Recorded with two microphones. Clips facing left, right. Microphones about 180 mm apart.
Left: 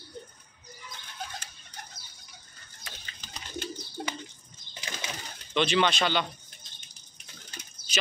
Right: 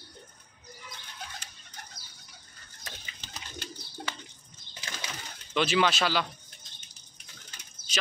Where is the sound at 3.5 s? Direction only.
20° left (ahead or behind).